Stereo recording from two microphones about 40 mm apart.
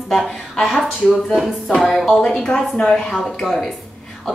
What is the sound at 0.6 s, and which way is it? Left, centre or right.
Speech, centre.